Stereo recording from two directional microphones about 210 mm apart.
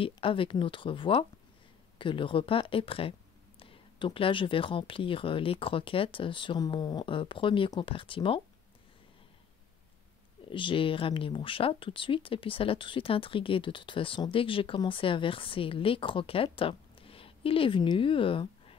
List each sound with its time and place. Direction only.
0.0 s speech: 25° left (ahead or behind)
10.5 s speech: 25° left (ahead or behind)